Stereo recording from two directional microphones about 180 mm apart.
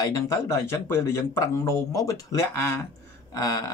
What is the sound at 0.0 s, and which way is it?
Speech, 15° left (ahead or behind).